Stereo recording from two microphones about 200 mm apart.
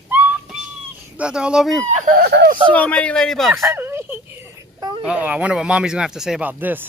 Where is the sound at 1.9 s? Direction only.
40° right (ahead or behind).